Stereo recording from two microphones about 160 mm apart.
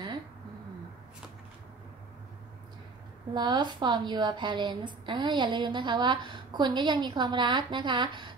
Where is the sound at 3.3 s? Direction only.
25° right (ahead or behind).